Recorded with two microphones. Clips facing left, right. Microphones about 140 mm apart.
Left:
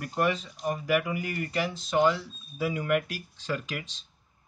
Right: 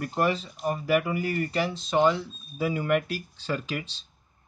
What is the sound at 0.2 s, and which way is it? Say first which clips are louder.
Speech: right 1 dB; 35° right (ahead or behind).